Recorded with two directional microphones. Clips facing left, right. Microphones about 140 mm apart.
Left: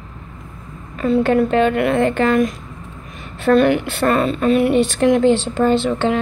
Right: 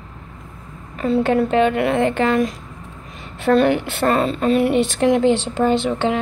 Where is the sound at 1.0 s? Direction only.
25° right (ahead or behind).